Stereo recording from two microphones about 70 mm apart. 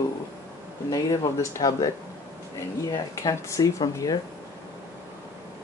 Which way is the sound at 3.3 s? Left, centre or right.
Left.